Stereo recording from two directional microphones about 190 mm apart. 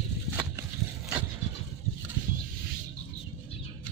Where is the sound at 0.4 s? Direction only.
5° right (ahead or behind).